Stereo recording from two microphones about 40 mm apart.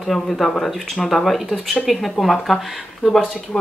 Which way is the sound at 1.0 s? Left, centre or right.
Centre.